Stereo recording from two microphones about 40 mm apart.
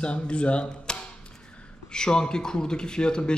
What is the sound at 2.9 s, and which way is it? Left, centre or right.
Speech, left.